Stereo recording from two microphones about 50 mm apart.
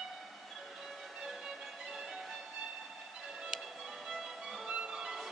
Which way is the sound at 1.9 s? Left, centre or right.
Centre.